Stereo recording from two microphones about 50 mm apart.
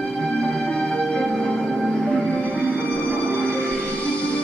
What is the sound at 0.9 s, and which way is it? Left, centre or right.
Music, centre.